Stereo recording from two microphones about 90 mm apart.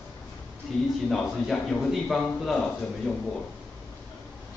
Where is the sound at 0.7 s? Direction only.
Centre (ahead or behind).